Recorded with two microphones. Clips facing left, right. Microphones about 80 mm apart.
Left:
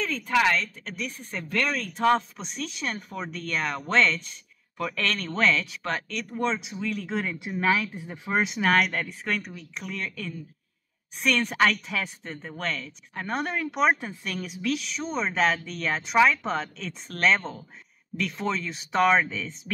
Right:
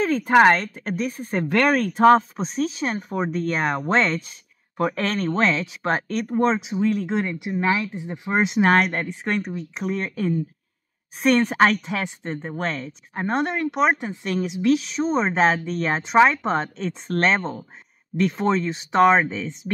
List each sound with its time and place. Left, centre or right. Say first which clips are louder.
0.0 s speech: right 8 dB; right
7.3 s speech: right 2 dB; centre
8.3 s speech: right 5 dB; right
14.2 s speech: right 10 dB; right